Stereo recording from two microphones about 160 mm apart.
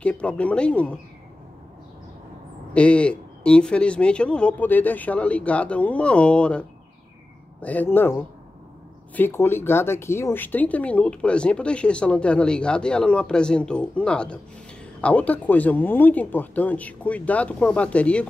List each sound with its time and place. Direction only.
0.0 s speech: 5° left (ahead or behind)
2.7 s speech: 5° left (ahead or behind)
7.6 s speech: 10° left (ahead or behind)